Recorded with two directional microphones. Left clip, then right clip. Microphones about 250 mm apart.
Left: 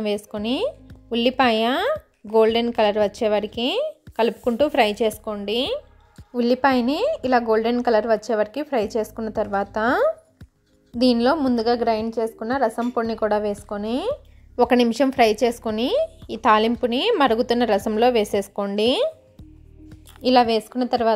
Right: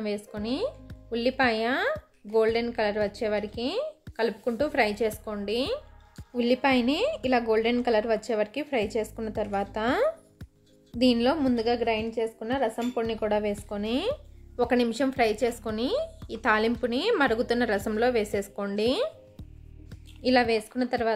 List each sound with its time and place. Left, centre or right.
0.0 s a woman's voice: left
20.2 s speech: centre